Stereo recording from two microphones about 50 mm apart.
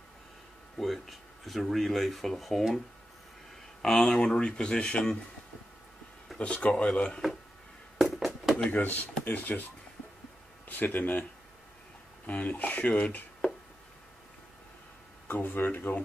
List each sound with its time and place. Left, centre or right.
0.7 s speech: centre
3.8 s speech: centre
6.3 s speech: left
8.0 s chop: centre
8.6 s speech: left
10.8 s speech: left
12.3 s speech: left
15.2 s speech: left